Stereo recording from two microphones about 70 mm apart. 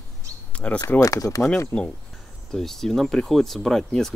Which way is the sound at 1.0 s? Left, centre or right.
Left.